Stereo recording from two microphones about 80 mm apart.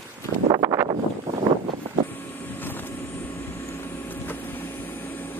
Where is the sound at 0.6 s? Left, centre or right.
Right.